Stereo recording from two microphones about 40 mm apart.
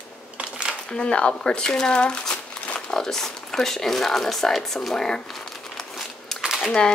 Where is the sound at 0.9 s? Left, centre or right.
Left.